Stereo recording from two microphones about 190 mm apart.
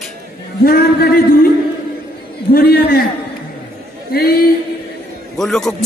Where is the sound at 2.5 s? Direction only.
55° left (ahead or behind).